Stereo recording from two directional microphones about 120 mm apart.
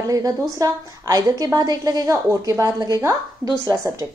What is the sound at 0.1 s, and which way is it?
A woman's voice, 30° right (ahead or behind).